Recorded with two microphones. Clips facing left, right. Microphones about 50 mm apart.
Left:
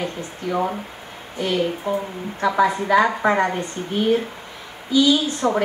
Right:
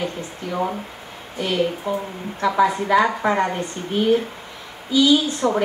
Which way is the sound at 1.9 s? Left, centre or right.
Centre.